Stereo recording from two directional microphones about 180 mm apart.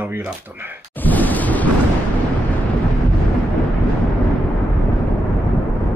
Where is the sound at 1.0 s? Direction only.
10° left (ahead or behind).